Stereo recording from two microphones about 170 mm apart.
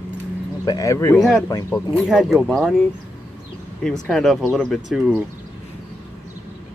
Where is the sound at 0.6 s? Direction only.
20° left (ahead or behind).